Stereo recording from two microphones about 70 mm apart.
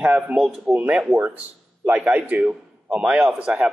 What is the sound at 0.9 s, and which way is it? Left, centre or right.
Speech, centre.